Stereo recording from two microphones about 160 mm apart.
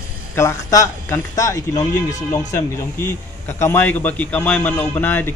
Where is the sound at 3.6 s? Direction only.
15° left (ahead or behind).